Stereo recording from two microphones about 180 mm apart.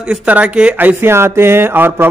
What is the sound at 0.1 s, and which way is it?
Speech, 5° right (ahead or behind).